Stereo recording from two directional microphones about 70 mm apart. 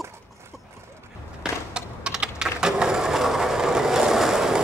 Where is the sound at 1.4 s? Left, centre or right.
Centre.